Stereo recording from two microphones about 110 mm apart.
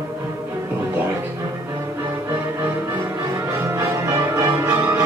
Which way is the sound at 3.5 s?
25° right (ahead or behind).